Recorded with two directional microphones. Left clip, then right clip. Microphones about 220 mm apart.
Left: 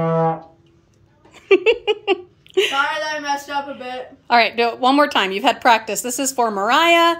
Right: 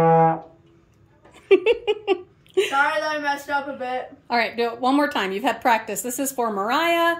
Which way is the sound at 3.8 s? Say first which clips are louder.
Right 2 dB; centre (ahead or behind).